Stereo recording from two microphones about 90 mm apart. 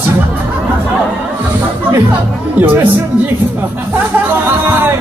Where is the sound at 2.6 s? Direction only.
20° right (ahead or behind).